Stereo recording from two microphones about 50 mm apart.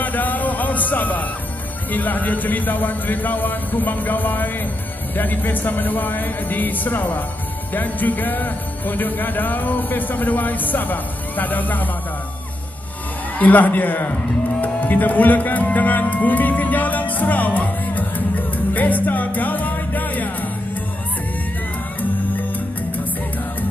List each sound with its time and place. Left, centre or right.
0.0 s music: left
1.9 s speech: left
13.4 s music: left